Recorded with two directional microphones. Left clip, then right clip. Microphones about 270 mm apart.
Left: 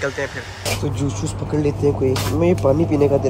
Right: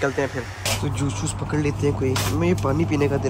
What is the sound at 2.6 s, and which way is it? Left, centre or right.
Speech, right.